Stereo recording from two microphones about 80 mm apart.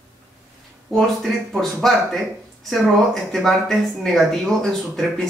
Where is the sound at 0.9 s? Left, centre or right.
Centre.